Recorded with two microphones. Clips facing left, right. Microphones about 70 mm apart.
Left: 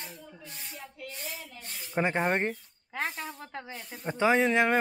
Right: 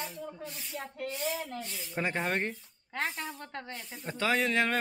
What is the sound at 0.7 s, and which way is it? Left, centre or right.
Rub, right.